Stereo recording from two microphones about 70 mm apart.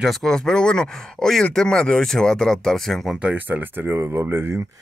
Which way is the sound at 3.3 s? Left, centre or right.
Right.